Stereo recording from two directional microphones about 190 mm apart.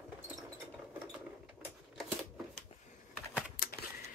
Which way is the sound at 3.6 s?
50° left (ahead or behind).